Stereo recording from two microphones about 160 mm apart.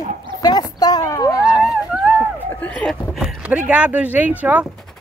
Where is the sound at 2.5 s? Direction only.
10° left (ahead or behind).